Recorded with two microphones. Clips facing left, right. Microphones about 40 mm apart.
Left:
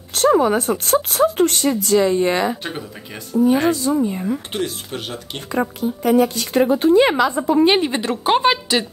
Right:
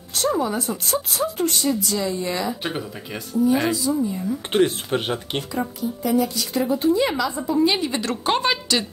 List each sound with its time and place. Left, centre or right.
0.1 s speech: left
4.5 s speech: right
5.5 s speech: left
8.0 s a woman's voice: centre